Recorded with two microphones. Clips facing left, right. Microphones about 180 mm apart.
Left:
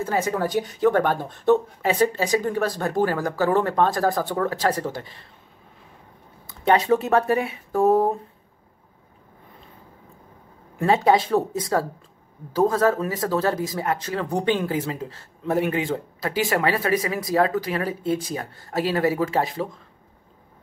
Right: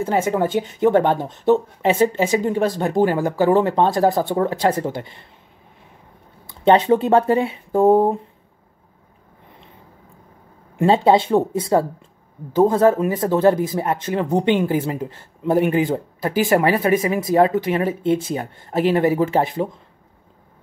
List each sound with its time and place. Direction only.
0.0 s speech: 20° right (ahead or behind)
6.6 s speech: 25° right (ahead or behind)
10.8 s speech: 25° right (ahead or behind)